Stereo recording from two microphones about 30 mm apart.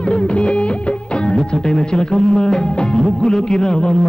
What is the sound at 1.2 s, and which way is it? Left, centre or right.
Music, left.